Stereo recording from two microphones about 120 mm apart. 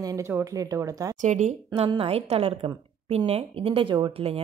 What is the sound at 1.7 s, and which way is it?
A woman's voice, 55° right (ahead or behind).